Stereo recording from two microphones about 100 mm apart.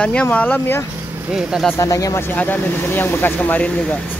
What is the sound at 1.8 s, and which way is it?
Speech, 35° left (ahead or behind).